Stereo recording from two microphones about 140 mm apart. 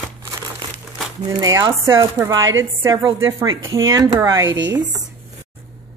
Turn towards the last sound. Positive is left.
turn(degrees=-20)  # may be behind; listen again after turning